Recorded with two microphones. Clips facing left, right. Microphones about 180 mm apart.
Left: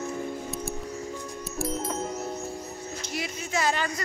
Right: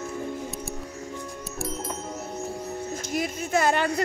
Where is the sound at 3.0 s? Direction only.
50° right (ahead or behind).